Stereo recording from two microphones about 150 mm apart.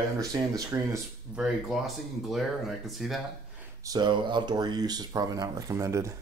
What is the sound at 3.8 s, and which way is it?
Speech, 30° right (ahead or behind).